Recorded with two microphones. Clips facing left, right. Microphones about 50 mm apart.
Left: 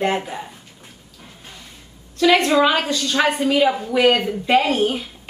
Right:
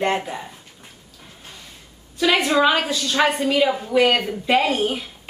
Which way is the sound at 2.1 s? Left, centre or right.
Centre.